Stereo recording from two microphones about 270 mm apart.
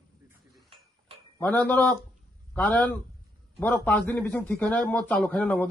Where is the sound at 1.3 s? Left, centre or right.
Centre.